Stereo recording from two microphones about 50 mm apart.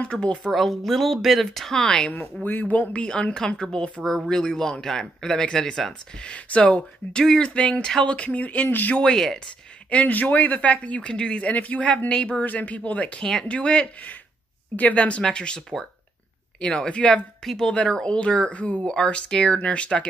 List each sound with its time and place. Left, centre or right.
0.0 s speech: left
0.5 s speech: centre
2.4 s speech: left
8.9 s speech: centre
9.8 s speech: left
13.2 s speech: centre
16.6 s speech: centre
17.4 s a woman's voice: centre
18.0 s speech: left